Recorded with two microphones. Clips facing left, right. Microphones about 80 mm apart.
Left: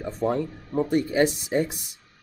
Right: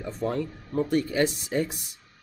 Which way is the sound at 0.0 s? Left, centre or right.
Left.